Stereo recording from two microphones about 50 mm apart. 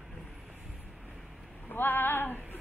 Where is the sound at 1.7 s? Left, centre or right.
Left.